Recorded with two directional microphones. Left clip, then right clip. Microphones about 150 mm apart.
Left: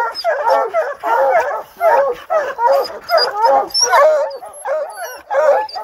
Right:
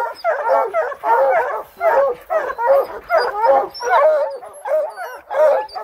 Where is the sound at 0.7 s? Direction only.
45° left (ahead or behind).